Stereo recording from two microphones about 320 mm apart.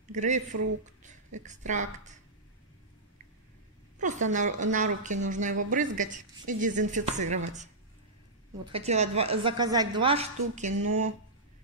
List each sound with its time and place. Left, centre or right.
0.1 s speech: right
4.0 s speech: right
8.7 s a woman's voice: right